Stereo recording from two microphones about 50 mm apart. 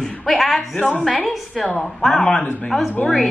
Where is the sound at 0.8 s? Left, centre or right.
Centre.